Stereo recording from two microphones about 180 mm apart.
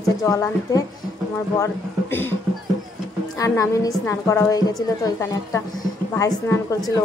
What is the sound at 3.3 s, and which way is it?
A woman's voice, 15° left (ahead or behind).